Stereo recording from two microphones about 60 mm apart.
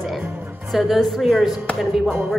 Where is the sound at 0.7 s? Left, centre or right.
Centre.